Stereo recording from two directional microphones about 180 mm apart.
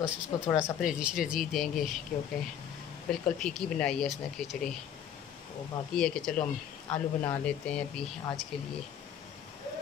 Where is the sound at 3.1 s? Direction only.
5° left (ahead or behind).